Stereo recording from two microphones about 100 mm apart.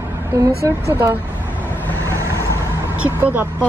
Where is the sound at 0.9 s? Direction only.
20° right (ahead or behind).